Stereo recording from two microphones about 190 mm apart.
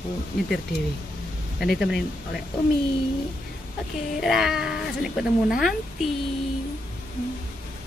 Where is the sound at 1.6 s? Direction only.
Centre (ahead or behind).